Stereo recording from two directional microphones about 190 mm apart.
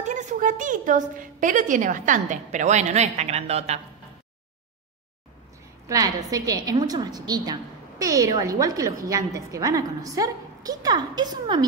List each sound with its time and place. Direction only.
0.0 s a woman's voice: 40° right (ahead or behind)
5.9 s a woman's voice: 20° right (ahead or behind)